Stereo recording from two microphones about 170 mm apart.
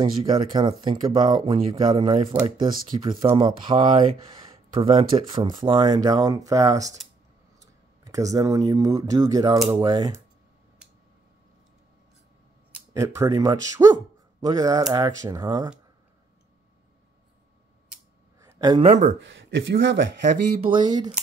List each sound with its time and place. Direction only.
0.0 s speech: 30° right (ahead or behind)
12.9 s speech: 20° right (ahead or behind)
18.4 s a sound: 20° right (ahead or behind)
18.8 s speech: 40° right (ahead or behind)
19.0 s speech: 90° right
20.7 s speech: 25° right (ahead or behind)